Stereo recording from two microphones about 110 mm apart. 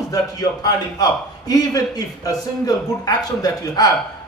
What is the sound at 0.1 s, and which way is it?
A man's voice, 35° left (ahead or behind).